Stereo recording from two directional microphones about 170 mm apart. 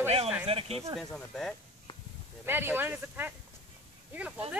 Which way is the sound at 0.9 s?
5° left (ahead or behind).